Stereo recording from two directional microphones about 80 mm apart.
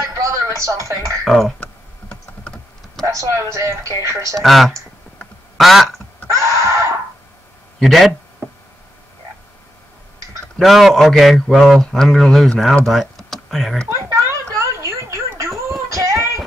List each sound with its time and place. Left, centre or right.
0.0 s a sound: right
1.2 s a man's voice: centre
1.6 s computer keyboard: centre
3.1 s speech: right
4.4 s a man's voice: centre
6.3 s a sound: right
7.8 s a man's voice: centre
10.6 s a man's voice: centre
12.8 s typing: centre
13.8 s a sound: right
15.9 s child singing: right